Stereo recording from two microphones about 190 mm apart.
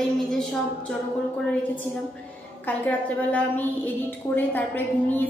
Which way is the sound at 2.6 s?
10° left (ahead or behind).